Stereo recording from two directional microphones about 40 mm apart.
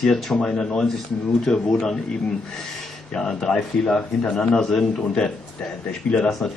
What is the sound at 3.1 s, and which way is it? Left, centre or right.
A man's voice, centre.